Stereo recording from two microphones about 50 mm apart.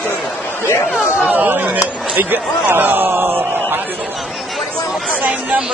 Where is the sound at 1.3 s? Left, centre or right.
Right.